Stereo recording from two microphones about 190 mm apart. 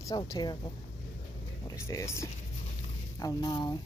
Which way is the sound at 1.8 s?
15° left (ahead or behind).